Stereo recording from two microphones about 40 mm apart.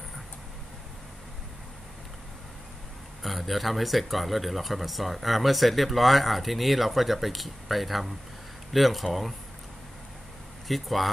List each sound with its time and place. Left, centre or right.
3.2 s speech: centre
10.7 s speech: centre